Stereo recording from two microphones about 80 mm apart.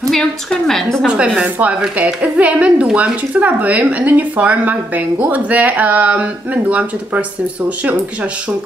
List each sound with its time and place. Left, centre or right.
0.1 s a woman's voice: centre
1.0 s a woman's voice: centre